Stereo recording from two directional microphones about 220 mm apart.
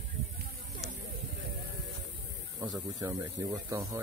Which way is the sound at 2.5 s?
15° right (ahead or behind).